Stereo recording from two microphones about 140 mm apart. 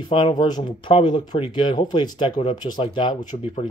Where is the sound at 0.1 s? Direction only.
35° left (ahead or behind).